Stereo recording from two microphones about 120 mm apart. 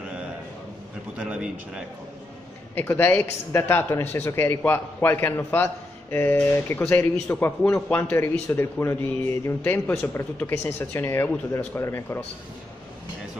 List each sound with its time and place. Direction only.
1.1 s a man's voice: 10° right (ahead or behind)
2.7 s speech: 15° left (ahead or behind)